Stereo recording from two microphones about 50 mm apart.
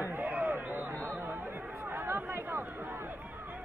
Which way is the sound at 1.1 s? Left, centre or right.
Right.